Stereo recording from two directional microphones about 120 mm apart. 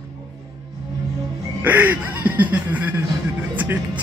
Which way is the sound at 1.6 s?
15° right (ahead or behind).